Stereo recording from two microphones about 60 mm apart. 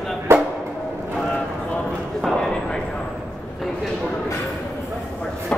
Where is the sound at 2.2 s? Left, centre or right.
Centre.